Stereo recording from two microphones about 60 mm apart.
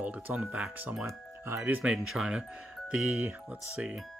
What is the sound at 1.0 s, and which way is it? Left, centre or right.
Speech, right.